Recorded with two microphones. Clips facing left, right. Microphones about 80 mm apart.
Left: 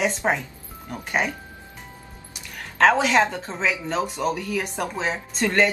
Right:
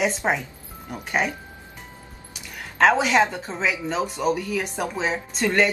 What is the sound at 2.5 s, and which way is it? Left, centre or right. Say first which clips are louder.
Speech: even; centre.